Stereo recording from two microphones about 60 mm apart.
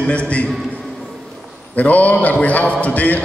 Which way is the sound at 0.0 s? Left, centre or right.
Centre.